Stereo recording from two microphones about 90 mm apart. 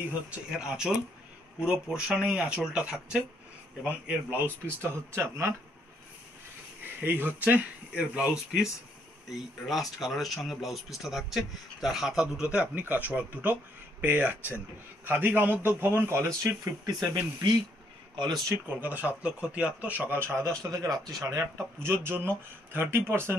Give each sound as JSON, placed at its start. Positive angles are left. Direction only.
{"t": 0.5, "sound": "speech", "side_deg": -10}
{"t": 3.8, "sound": "speech", "side_deg": -20}
{"t": 6.8, "sound": "speech", "side_deg": -20}
{"t": 9.3, "sound": "speech", "side_deg": 0}
{"t": 16.8, "sound": "speech", "side_deg": -50}
{"t": 18.5, "sound": "speech", "side_deg": -20}
{"t": 21.8, "sound": "speech", "side_deg": -25}